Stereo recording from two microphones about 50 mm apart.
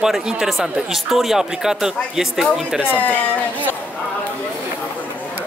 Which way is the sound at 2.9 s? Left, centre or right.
Left.